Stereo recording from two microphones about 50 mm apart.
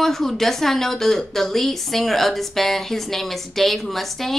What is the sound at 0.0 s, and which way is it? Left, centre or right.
A woman's voice, centre.